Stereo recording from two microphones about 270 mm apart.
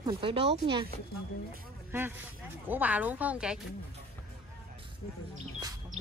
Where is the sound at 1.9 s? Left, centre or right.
Centre.